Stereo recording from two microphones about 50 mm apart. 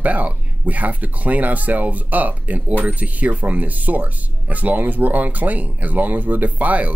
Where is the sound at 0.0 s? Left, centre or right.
Right.